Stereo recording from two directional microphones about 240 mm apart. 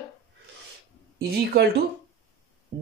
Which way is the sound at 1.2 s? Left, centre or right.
Right.